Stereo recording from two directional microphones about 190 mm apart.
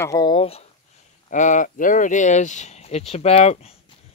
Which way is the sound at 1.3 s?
40° left (ahead or behind).